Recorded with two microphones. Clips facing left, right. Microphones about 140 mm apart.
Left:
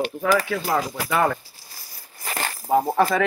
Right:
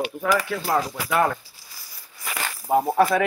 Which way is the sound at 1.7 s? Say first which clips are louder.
Left 1 dB; 40° left (ahead or behind).